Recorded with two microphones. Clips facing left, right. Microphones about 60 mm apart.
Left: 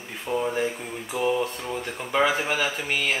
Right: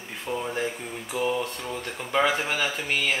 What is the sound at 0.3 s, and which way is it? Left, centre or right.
Speech, centre.